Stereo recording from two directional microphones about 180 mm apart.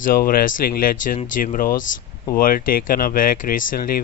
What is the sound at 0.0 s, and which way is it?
Speech, 55° left (ahead or behind).